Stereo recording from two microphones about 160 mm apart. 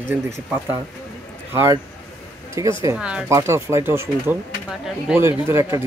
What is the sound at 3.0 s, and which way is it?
Speech, 5° right (ahead or behind).